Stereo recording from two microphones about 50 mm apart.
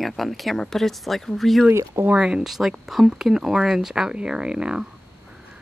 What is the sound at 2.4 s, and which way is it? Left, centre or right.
Speech, centre.